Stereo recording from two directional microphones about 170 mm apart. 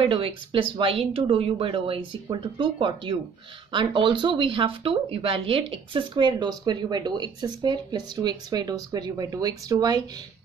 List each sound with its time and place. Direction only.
0.0 s speech: 30° right (ahead or behind)